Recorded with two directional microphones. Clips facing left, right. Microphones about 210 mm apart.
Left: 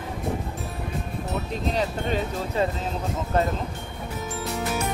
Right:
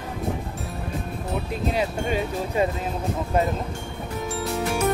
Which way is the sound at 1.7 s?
10° right (ahead or behind).